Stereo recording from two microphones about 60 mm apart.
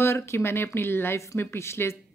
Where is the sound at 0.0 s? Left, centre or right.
Left.